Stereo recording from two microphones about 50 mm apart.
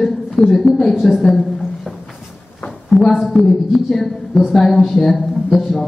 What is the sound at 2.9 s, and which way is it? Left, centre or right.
Speech, centre.